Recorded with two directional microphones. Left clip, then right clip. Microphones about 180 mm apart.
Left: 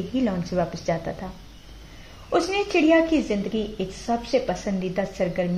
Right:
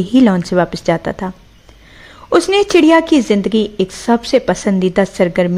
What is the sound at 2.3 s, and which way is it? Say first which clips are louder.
A woman's voice: right 11 dB; 45° right (ahead or behind).